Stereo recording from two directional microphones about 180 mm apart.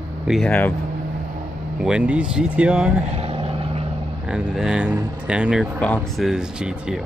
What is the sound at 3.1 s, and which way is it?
Vehicle, 35° right (ahead or behind).